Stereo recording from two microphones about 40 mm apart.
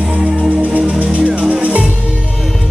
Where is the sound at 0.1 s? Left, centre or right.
Right.